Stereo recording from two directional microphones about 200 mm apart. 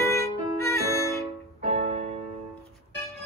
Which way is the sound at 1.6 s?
35° right (ahead or behind).